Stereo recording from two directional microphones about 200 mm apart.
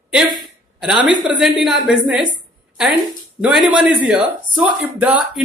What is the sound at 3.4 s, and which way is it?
Speech, 5° right (ahead or behind).